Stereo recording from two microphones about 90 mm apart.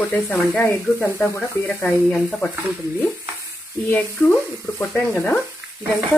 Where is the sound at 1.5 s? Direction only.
15° left (ahead or behind).